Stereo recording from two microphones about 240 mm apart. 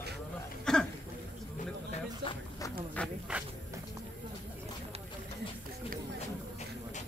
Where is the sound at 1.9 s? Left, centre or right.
Left.